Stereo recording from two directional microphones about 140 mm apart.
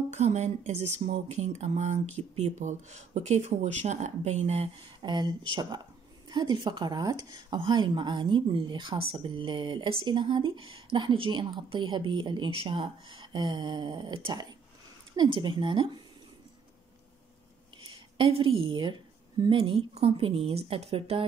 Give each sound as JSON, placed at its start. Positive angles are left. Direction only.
{"t": 0.1, "sound": "speech", "side_deg": -55}
{"t": 5.0, "sound": "speech", "side_deg": -30}
{"t": 17.8, "sound": "a sound", "side_deg": -35}
{"t": 19.5, "sound": "a woman's voice", "side_deg": -40}